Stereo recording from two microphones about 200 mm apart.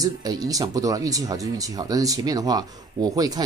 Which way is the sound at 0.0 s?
20° right (ahead or behind).